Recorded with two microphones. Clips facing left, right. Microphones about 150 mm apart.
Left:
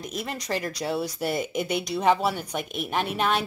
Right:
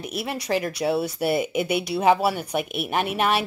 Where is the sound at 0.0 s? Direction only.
10° right (ahead or behind).